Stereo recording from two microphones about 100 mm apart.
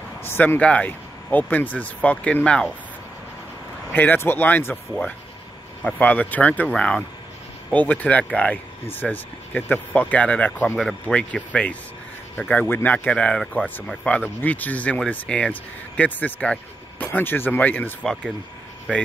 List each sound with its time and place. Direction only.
0.2 s speech: 20° left (ahead or behind)
3.9 s speech: 20° left (ahead or behind)